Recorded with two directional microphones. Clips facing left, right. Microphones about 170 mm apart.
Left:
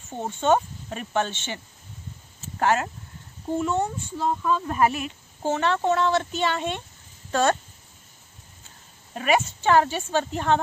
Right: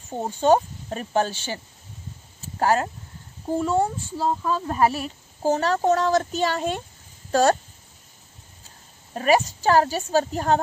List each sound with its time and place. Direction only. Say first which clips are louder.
0.2 s speech: right 3 dB; 35° right (ahead or behind)
2.6 s speech: right 2 dB; 35° right (ahead or behind)
9.1 s speech: right 3 dB; 40° right (ahead or behind)